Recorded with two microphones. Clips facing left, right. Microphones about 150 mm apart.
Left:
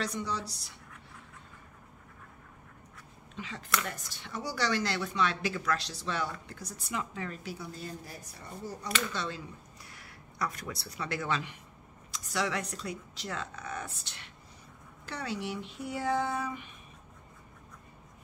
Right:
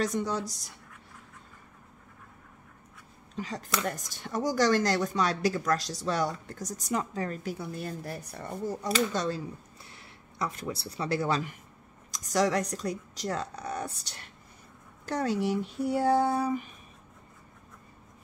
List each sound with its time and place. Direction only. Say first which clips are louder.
0.0 s speech: right 5 dB; 45° right (ahead or behind)
3.3 s speech: right 2 dB; 40° right (ahead or behind); by 8.7 s 55° right (ahead or behind)
8.8 s speech: right 6 dB; 35° right (ahead or behind)
9.8 s speech: even; 25° right (ahead or behind)